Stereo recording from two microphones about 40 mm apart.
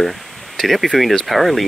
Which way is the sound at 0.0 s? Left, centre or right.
Centre.